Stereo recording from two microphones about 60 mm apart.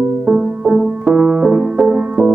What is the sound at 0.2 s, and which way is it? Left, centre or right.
Music, centre.